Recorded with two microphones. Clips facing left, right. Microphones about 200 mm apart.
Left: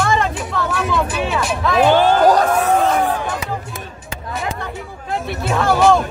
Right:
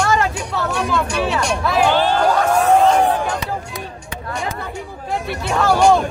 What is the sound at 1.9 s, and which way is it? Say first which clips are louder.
Music: left 4 dB; 50° left (ahead or behind).